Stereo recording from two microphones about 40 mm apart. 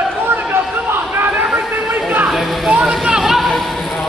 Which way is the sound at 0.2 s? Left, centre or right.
Right.